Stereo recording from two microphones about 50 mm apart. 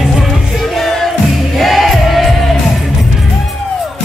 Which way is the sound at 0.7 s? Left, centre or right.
Centre.